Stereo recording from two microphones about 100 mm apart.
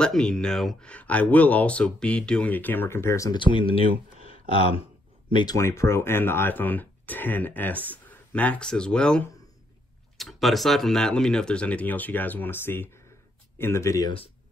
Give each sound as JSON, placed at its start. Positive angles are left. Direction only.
{"t": 0.0, "sound": "speech", "side_deg": 10}
{"t": 3.3, "sound": "speech", "side_deg": 55}
{"t": 5.3, "sound": "speech", "side_deg": 45}
{"t": 5.6, "sound": "speech", "side_deg": 25}